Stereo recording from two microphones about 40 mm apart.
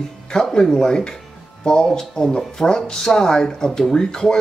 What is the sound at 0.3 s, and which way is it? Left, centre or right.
Speech, centre.